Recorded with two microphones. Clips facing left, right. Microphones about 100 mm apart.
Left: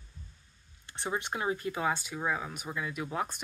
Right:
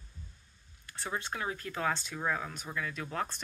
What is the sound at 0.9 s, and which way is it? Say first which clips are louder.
Speech: left 3 dB; 20° left (ahead or behind).